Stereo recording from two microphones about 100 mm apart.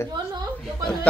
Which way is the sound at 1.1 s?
10° left (ahead or behind).